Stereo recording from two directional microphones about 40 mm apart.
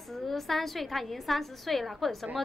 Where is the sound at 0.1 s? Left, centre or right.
Centre.